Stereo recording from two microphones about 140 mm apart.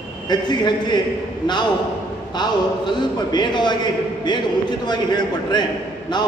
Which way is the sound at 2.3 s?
30° left (ahead or behind).